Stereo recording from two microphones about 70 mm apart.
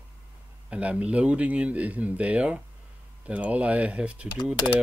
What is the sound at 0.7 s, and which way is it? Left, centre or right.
Speech, centre.